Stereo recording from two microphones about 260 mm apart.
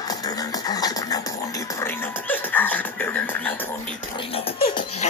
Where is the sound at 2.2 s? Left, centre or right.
Centre.